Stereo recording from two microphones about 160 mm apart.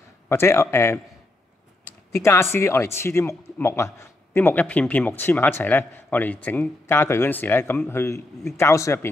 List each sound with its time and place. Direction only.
0.3 s speech: 15° left (ahead or behind)
2.1 s speech: 15° left (ahead or behind)